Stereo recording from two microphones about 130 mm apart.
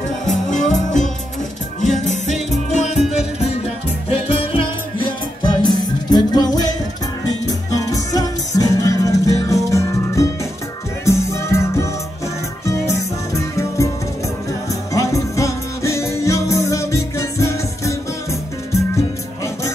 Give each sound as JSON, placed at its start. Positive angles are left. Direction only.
{"t": 0.3, "sound": "music", "side_deg": 70}
{"t": 3.6, "sound": "music", "side_deg": 45}